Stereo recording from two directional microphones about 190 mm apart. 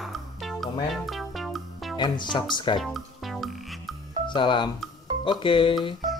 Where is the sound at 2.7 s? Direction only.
Centre (ahead or behind).